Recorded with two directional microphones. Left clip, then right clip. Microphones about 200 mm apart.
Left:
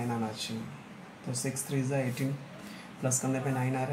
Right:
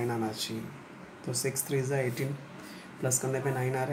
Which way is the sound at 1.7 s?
20° right (ahead or behind).